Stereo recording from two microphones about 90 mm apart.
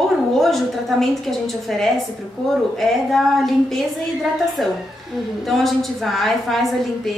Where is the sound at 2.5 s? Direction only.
Centre (ahead or behind).